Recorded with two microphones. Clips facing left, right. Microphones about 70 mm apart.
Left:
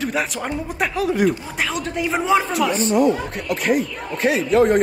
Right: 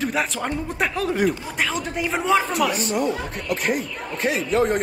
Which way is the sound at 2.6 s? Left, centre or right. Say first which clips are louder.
Left 4 dB; left.